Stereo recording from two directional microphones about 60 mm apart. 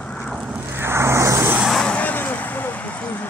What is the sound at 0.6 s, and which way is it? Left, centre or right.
Vehicle, right.